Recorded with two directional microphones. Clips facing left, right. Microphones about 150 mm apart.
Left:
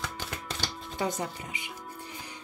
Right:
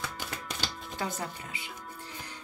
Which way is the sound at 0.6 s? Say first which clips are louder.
Left 3 dB; 15° left (ahead or behind).